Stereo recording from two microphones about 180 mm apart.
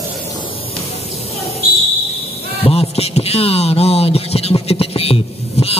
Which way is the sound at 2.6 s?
35° left (ahead or behind).